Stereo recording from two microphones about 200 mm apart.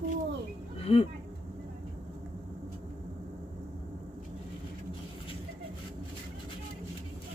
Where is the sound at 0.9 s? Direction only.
30° left (ahead or behind).